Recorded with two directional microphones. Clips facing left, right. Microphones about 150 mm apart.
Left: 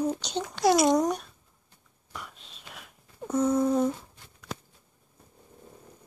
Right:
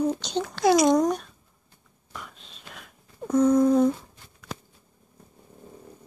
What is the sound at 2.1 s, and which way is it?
Whispering, 5° left (ahead or behind).